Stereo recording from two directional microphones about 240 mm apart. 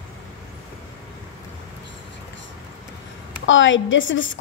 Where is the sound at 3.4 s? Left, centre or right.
Left.